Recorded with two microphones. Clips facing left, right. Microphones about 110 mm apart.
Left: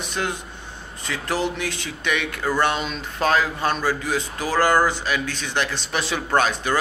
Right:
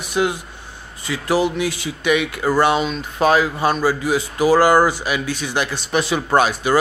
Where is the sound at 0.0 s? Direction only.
10° right (ahead or behind).